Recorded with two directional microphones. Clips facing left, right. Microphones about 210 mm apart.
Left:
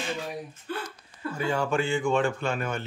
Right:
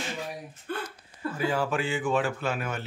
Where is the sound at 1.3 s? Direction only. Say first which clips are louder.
Left 1 dB; 5° right (ahead or behind).